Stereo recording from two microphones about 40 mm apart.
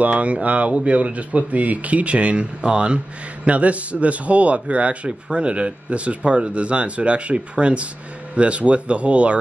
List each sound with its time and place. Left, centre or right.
0.0 s a man's voice: right